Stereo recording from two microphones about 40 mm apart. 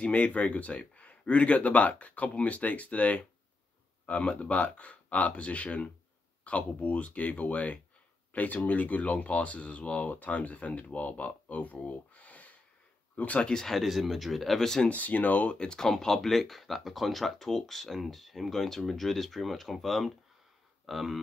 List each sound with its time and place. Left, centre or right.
0.0 s speech: left
4.3 s speech: left
13.4 s speech: centre
13.7 s speech: centre
14.9 s speech: left
15.5 s speech: left
15.9 s speech: centre
20.8 s a sound: centre